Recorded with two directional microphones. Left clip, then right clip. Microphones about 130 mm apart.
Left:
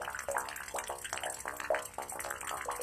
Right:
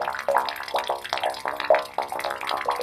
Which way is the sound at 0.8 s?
40° right (ahead or behind).